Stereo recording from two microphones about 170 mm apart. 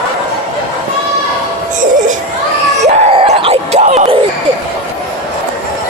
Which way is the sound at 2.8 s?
40° right (ahead or behind).